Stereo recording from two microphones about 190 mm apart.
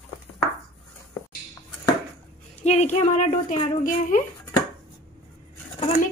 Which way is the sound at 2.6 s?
35° left (ahead or behind).